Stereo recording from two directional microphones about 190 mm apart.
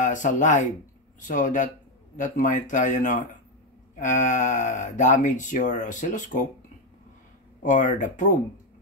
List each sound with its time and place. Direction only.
0.0 s speech: 40° left (ahead or behind)
7.6 s speech: 40° left (ahead or behind)